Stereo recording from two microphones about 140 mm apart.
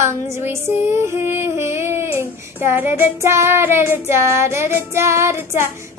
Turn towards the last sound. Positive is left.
turn(degrees=-20)  # may be behind; listen again after turning